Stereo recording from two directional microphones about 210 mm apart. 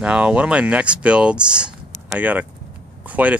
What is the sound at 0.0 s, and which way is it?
Speech, 5° right (ahead or behind).